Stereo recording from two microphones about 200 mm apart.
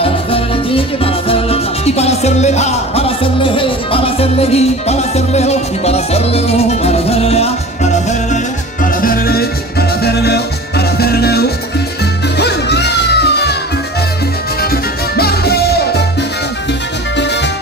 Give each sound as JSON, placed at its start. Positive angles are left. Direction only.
{"t": 0.0, "sound": "music", "side_deg": 30}
{"t": 9.0, "sound": "music", "side_deg": 50}
{"t": 14.6, "sound": "music", "side_deg": 50}